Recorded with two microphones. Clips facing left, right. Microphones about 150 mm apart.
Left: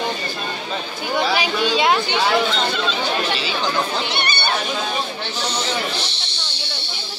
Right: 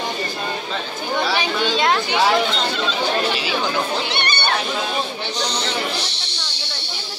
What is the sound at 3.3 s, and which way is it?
Chatter, 10° right (ahead or behind).